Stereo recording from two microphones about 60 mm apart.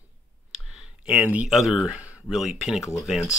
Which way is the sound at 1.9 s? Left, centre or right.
Right.